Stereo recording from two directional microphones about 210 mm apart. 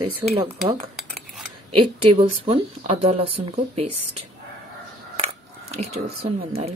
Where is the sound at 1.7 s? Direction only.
90° right.